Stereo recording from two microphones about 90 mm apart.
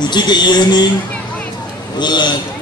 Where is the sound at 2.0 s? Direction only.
55° left (ahead or behind).